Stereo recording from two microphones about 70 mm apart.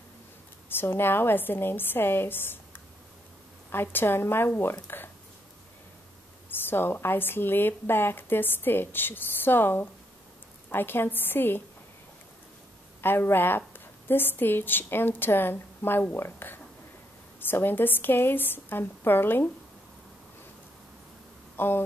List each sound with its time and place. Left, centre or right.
0.7 s a woman's voice: left
6.5 s a woman's voice: left
13.0 s a woman's voice: left
21.5 s a sound: left